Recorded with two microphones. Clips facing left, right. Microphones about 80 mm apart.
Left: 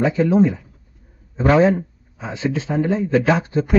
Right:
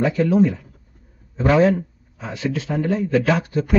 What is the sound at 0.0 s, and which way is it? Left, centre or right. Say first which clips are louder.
A man's voice: left 1 dB; left.